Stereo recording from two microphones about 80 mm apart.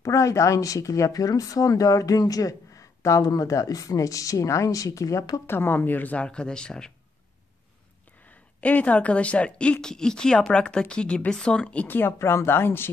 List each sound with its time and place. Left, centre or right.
0.0 s speech: left
5.5 s speech: left; by 6.9 s centre
8.3 s speech: centre
12.1 s speech: left